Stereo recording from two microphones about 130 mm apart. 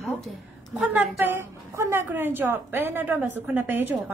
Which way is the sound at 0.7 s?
10° right (ahead or behind).